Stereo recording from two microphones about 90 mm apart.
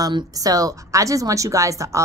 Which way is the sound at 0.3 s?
40° right (ahead or behind).